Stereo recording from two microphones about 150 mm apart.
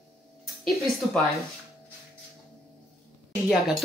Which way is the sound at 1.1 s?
Centre (ahead or behind).